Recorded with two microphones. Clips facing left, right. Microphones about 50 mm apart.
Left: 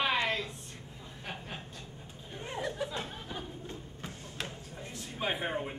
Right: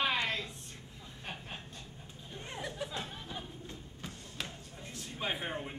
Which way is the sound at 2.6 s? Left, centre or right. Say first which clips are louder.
Left 4 dB; left.